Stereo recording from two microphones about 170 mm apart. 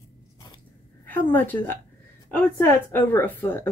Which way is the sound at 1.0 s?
10° left (ahead or behind).